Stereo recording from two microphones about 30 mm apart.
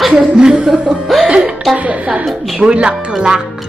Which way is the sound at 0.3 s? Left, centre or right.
Right.